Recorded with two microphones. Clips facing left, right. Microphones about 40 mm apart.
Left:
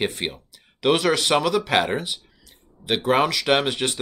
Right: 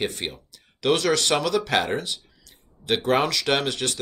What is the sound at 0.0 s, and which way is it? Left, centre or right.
Speech, centre.